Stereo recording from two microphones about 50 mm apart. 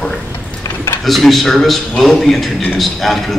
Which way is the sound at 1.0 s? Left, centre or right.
Centre.